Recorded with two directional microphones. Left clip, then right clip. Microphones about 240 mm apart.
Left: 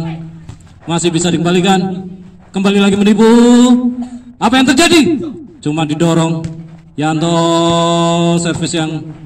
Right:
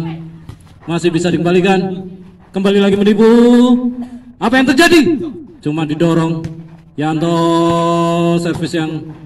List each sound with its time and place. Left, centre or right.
0.8 s mantra: left